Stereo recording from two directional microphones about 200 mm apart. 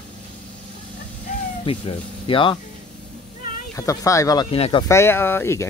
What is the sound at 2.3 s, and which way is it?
Speech, 25° left (ahead or behind).